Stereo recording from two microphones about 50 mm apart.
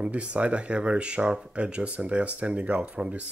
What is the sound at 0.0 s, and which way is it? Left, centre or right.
Speech, right.